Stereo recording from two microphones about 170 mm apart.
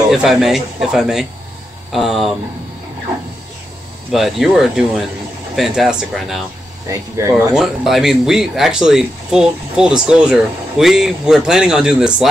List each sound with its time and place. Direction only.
0.1 s speech: centre (ahead or behind)
4.1 s speech: centre (ahead or behind)
6.9 s speech: 15° right (ahead or behind)
7.5 s speech: centre (ahead or behind)